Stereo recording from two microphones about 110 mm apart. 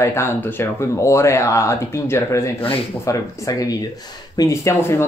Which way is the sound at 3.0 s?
30° left (ahead or behind).